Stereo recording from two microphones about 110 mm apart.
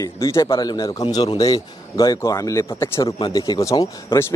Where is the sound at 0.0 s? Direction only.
30° left (ahead or behind).